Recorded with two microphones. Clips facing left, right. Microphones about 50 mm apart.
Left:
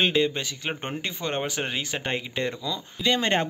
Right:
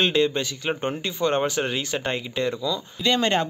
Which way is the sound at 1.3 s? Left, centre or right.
Centre.